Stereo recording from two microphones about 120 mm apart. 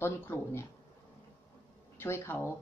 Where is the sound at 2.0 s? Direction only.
20° left (ahead or behind).